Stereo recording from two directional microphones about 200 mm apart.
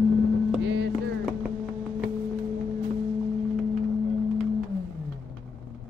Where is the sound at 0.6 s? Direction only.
65° right (ahead or behind).